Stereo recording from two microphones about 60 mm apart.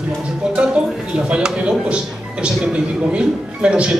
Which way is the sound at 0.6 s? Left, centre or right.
Centre.